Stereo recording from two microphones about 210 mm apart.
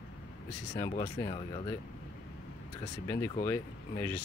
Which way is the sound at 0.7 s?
15° left (ahead or behind).